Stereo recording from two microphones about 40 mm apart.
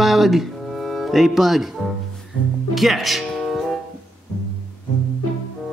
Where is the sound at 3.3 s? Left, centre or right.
Centre.